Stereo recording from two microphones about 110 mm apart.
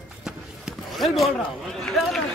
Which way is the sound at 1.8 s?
Centre (ahead or behind).